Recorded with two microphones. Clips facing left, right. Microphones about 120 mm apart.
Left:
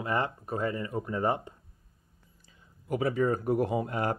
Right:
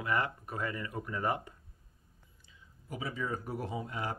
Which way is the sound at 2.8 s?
65° left (ahead or behind).